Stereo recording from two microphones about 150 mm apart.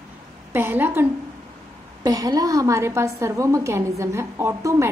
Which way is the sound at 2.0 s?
25° right (ahead or behind).